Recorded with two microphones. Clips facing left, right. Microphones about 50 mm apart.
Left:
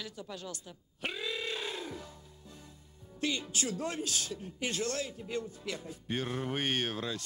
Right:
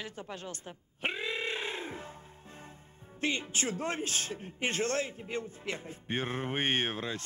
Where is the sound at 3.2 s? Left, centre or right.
Right.